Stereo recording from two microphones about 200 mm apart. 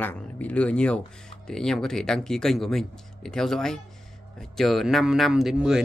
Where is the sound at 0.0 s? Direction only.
5° left (ahead or behind).